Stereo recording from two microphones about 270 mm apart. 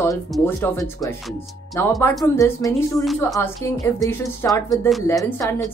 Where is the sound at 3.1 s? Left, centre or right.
Centre.